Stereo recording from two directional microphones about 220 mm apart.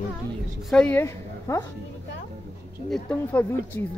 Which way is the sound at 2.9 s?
5° left (ahead or behind).